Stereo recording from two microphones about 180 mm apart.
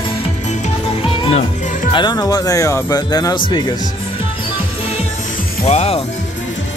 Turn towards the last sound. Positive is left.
turn(degrees=35)  # may be behind; listen again after turning